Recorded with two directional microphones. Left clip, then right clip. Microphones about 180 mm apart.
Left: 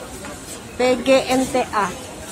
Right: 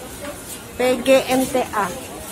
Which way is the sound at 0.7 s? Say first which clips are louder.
Even; 10° left (ahead or behind).